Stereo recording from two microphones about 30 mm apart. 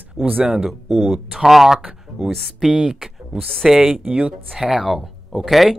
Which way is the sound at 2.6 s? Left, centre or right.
Right.